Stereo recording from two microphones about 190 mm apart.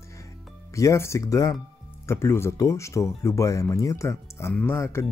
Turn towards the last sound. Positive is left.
turn(degrees=15)  # may be behind; listen again after turning